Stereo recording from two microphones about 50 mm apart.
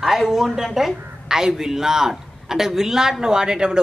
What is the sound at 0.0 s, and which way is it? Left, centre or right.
Speech, centre.